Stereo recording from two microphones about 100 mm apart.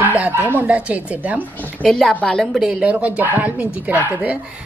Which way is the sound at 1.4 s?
15° left (ahead or behind).